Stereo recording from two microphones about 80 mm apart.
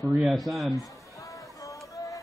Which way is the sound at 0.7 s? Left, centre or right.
Left.